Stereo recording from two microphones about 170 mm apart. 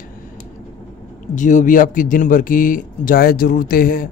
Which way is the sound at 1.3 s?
45° left (ahead or behind).